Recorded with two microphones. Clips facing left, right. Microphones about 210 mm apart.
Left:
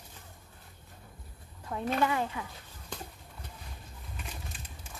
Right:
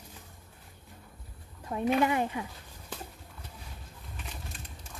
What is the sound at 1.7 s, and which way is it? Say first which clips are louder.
Speech: right 3 dB; 15° right (ahead or behind).